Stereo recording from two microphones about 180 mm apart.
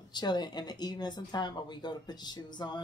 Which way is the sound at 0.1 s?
25° left (ahead or behind).